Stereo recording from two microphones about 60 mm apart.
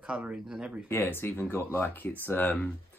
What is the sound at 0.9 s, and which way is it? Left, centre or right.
Speech, left.